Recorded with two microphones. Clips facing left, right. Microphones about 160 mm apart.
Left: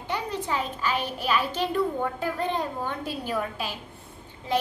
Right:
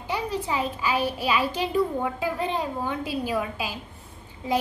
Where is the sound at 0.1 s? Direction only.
10° right (ahead or behind).